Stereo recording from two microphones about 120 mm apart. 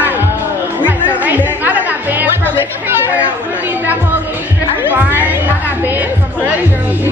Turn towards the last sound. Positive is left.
turn(degrees=-15)  # may be behind; listen again after turning